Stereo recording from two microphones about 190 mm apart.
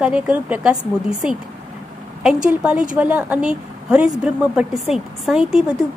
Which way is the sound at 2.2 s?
5° right (ahead or behind).